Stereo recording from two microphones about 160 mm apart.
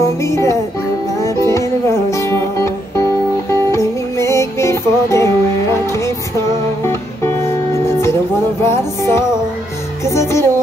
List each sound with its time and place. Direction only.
0.0 s music: 20° left (ahead or behind)